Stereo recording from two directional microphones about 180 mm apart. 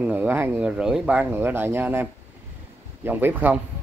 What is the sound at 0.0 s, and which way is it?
Speech, 10° right (ahead or behind).